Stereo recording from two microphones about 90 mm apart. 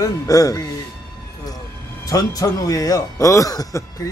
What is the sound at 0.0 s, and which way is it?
Speech, 40° left (ahead or behind).